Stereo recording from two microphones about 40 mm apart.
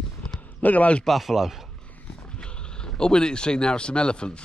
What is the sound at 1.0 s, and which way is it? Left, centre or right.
Speech, centre.